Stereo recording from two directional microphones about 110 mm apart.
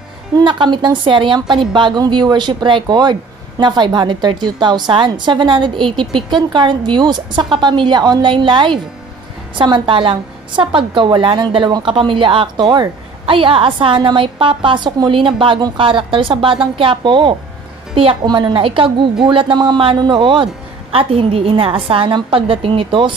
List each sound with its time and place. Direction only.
0.4 s a woman's voice: 45° right (ahead or behind)
13.2 s a woman's voice: 50° right (ahead or behind)